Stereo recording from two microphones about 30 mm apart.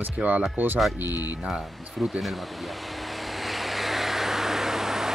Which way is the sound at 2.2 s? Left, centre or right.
Centre.